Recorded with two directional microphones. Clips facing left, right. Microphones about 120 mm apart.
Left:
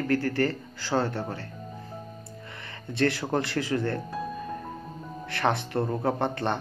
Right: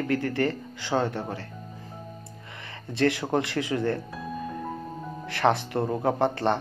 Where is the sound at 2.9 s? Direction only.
25° right (ahead or behind).